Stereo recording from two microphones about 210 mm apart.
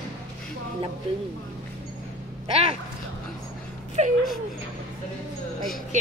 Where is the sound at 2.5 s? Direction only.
30° right (ahead or behind).